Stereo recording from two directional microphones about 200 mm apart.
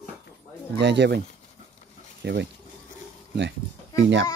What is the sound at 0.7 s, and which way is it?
Speech, 60° right (ahead or behind).